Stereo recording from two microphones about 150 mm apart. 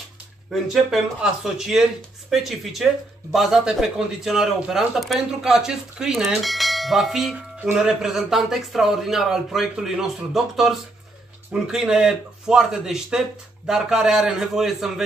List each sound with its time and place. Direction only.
0.5 s speech: centre (ahead or behind)